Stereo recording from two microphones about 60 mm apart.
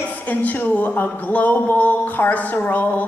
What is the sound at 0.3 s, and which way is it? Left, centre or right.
Speech, left.